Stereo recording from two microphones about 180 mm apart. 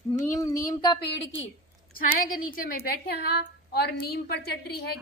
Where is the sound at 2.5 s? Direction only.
60° left (ahead or behind).